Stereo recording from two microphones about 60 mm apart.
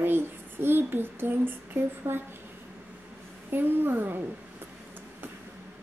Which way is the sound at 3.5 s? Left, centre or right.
Right.